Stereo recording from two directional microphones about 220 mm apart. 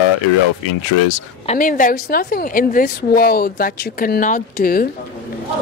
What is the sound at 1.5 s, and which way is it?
A woman's voice, 35° left (ahead or behind).